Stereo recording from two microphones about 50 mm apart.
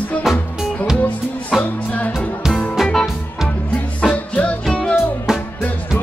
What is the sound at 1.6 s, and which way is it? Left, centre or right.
Music, left.